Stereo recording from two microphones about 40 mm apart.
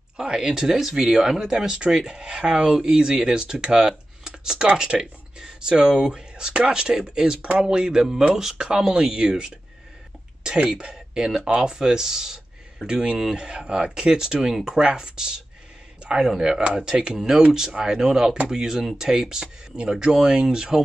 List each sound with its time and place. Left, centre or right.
0.2 s speech: centre
16.0 s a sound: right
16.3 s speech: centre